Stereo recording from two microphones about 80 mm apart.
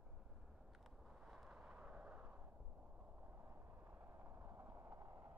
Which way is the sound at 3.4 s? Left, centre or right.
Right.